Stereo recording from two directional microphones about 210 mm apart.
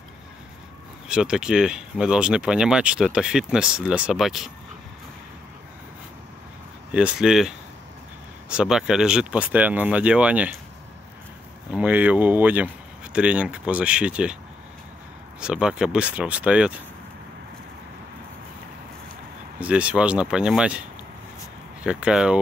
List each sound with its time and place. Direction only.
1.0 s speech: 5° right (ahead or behind)
6.9 s speech: 5° right (ahead or behind)
11.7 s speech: 5° right (ahead or behind)
15.4 s speech: 5° right (ahead or behind)
19.6 s speech: 5° right (ahead or behind)
21.8 s speech: 5° right (ahead or behind)